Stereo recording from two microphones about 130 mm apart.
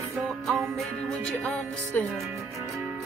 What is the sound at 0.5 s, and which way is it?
Music, centre (ahead or behind).